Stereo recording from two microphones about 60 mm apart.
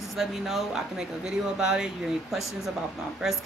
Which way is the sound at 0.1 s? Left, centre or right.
Centre.